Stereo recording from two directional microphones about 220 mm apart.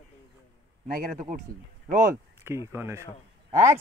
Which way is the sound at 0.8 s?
40° right (ahead or behind).